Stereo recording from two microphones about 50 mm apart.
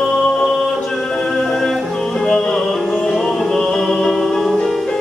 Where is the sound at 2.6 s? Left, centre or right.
Centre.